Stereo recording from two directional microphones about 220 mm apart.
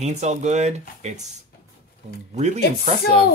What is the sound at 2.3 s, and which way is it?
Speech, 30° right (ahead or behind).